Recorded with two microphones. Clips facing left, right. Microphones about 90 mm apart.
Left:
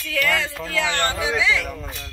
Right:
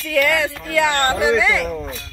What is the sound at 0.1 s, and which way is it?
Speech, 55° right (ahead or behind).